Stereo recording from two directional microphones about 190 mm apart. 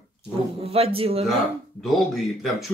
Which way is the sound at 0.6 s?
30° right (ahead or behind).